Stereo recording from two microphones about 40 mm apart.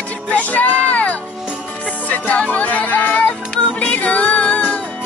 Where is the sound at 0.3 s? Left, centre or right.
Left.